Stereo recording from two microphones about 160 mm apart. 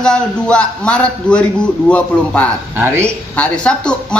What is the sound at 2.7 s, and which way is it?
Speech, 15° right (ahead or behind).